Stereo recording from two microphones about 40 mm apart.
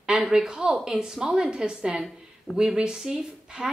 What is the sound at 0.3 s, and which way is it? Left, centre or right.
A woman's voice, centre.